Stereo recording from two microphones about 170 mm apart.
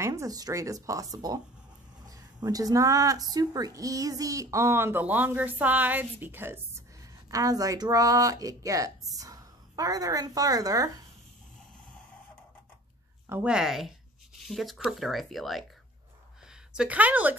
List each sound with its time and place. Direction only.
0.0 s speech: 20° right (ahead or behind)
13.3 s speech: 5° right (ahead or behind)
16.7 s speech: 5° right (ahead or behind)